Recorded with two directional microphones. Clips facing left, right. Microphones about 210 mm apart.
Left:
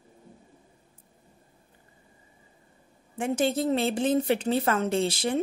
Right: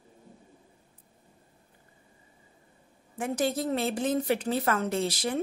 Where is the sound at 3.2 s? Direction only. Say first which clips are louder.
Left 3 dB; 25° left (ahead or behind).